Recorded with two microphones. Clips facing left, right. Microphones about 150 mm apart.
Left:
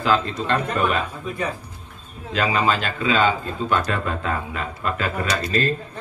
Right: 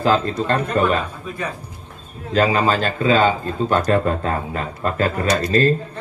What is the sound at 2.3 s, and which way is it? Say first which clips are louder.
A man's voice: right 4 dB; 40° right (ahead or behind).